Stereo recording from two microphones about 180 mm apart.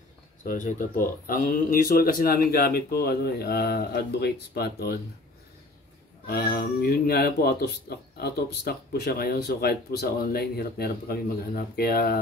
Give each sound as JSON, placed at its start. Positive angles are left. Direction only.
{"t": 0.4, "sound": "speech", "side_deg": 45}
{"t": 6.2, "sound": "speech", "side_deg": 60}